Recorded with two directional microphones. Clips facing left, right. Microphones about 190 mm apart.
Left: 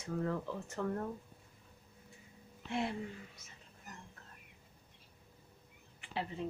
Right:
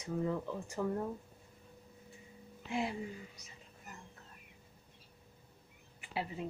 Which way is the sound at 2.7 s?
5° right (ahead or behind).